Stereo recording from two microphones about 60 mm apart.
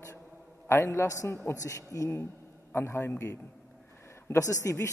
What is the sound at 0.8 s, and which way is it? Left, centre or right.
A man's voice, left.